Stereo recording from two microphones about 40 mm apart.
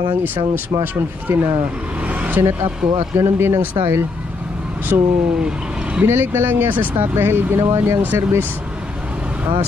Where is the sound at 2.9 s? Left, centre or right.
Right.